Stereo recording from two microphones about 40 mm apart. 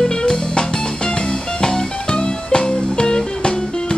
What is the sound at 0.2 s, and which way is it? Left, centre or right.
Music, left.